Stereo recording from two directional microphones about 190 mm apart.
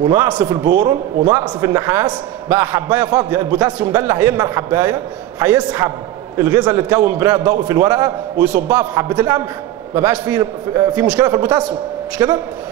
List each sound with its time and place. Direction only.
0.0 s a man's voice: 15° right (ahead or behind)